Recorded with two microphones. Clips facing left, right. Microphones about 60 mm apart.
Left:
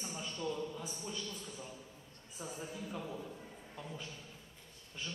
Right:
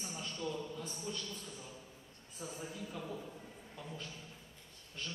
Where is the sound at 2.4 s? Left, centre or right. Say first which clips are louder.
Left 1 dB; centre.